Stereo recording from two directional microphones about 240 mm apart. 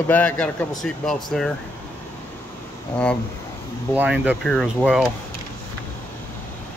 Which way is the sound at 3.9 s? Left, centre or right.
Centre.